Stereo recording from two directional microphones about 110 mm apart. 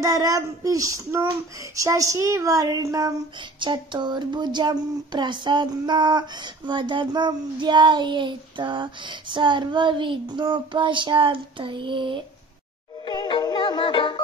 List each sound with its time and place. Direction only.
0.0 s speech: 30° right (ahead or behind)
3.5 s speech: 45° right (ahead or behind)
13.0 s music: 45° left (ahead or behind)